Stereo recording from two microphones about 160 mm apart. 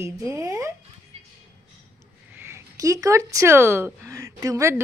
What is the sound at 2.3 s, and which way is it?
Speech, 15° right (ahead or behind).